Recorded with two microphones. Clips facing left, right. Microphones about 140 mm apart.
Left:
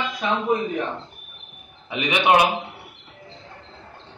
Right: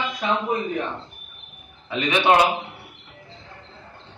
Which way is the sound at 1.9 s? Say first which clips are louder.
Even; 15° left (ahead or behind).